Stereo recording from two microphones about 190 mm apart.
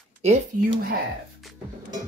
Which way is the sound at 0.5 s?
45° right (ahead or behind).